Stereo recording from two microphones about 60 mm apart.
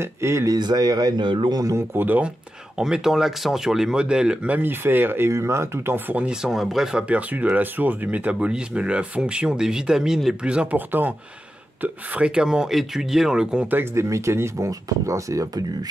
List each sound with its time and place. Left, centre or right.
0.0 s speech: right
0.5 s speech: right
2.0 s speech: right
2.8 s speech: centre
4.5 s speech: right
5.3 s speech: right
5.9 s speech: right
6.2 s speech: centre
7.1 s speech: right
10.9 s speech: right
12.3 s speech: centre
13.9 s speech: right
14.7 s speech: right